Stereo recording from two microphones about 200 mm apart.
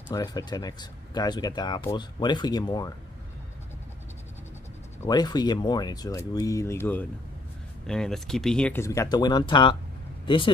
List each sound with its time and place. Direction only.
0.1 s speech: 20° left (ahead or behind)
5.0 s speech: 20° left (ahead or behind)